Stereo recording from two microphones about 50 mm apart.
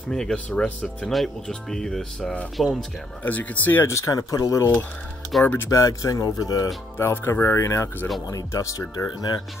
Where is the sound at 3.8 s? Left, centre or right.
Left.